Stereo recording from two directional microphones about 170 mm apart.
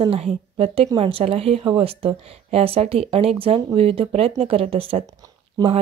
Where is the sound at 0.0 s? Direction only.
35° right (ahead or behind).